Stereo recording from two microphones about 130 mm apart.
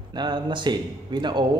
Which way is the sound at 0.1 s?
35° right (ahead or behind).